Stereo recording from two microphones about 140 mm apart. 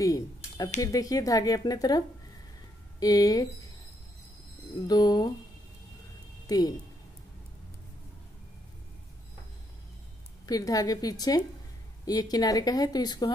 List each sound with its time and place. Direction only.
0.0 s a sound: 25° left (ahead or behind)
0.7 s speech: 25° left (ahead or behind)
4.8 s speech: 30° left (ahead or behind)
6.4 s speech: 25° left (ahead or behind)
10.4 s speech: 25° left (ahead or behind)